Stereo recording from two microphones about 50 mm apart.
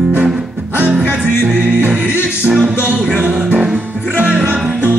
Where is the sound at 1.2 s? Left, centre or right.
Right.